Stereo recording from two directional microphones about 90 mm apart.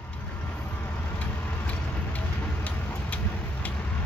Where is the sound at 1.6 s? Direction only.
15° left (ahead or behind).